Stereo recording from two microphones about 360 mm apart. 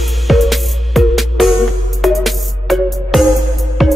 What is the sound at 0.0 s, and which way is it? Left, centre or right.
Music, centre.